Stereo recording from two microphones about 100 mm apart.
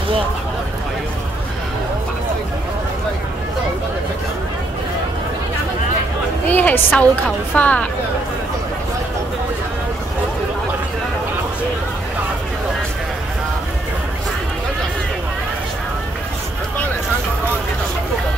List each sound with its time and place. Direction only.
6.5 s a woman's voice: 20° left (ahead or behind)